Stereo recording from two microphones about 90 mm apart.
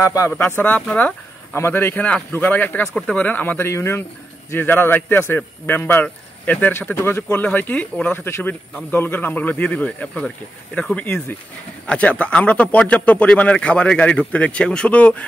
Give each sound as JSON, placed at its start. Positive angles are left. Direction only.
{"t": 0.0, "sound": "speech", "side_deg": 35}
{"t": 0.4, "sound": "speech", "side_deg": 20}